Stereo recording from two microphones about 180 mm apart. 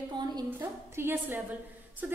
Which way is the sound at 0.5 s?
10° right (ahead or behind).